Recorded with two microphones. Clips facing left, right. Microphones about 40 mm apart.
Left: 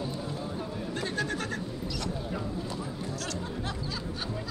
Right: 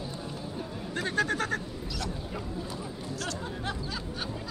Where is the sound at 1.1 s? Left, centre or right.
Right.